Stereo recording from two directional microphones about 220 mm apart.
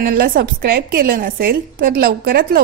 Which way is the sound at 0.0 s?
40° right (ahead or behind).